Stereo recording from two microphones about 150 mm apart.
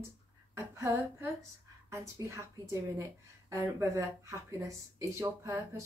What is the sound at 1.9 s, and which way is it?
Speech, 20° right (ahead or behind).